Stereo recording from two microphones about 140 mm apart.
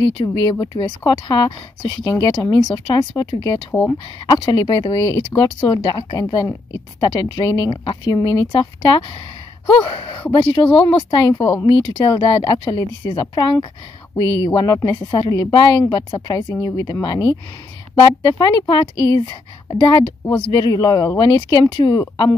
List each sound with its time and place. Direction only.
0.2 s speech: 30° left (ahead or behind)
4.4 s speech: 30° left (ahead or behind)